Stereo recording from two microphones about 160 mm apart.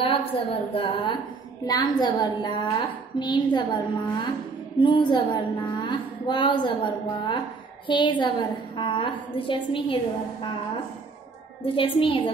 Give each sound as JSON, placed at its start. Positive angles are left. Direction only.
{"t": 0.0, "sound": "a woman's voice", "side_deg": 35}
{"t": 11.6, "sound": "a woman's voice", "side_deg": 35}